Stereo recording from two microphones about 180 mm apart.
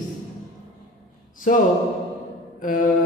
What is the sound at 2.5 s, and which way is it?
Mantra, 50° left (ahead or behind).